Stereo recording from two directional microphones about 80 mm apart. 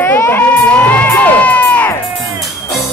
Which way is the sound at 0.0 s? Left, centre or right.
Left.